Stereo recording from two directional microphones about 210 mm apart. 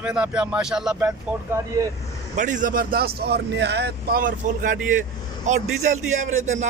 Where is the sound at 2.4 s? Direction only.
35° right (ahead or behind).